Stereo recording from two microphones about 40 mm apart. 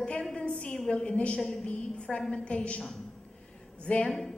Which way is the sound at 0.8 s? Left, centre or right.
Left.